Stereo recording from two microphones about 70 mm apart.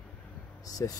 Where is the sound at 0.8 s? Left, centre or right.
Left.